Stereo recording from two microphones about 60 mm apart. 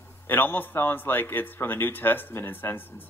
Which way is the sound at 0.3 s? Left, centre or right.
Left.